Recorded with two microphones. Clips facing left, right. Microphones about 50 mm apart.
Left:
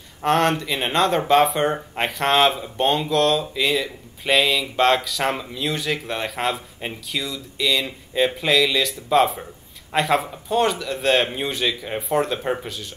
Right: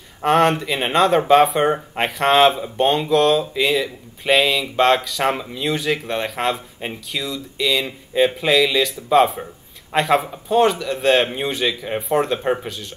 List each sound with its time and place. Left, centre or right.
0.2 s speech: centre